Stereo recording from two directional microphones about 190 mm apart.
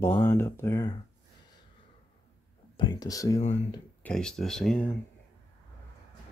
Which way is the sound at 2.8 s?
20° left (ahead or behind).